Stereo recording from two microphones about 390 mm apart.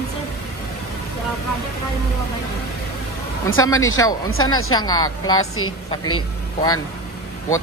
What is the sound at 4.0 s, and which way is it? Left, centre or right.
Speech, centre.